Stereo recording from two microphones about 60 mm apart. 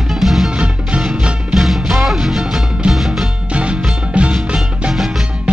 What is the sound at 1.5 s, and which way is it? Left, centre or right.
Music, centre.